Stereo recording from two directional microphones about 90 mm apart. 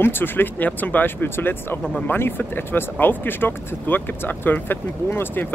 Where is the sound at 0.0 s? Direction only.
25° left (ahead or behind).